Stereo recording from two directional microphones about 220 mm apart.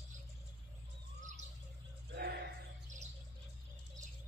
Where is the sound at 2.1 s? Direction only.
50° right (ahead or behind).